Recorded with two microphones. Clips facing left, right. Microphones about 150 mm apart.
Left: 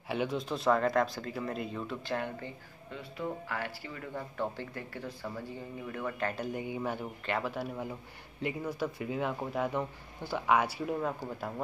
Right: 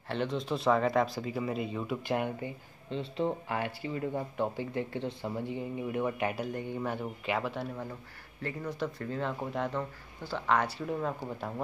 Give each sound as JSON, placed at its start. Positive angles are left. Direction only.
{"t": 0.1, "sound": "speech", "side_deg": 5}
{"t": 6.4, "sound": "speech", "side_deg": 5}